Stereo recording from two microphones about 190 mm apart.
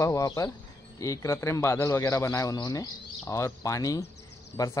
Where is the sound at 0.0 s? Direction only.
15° left (ahead or behind).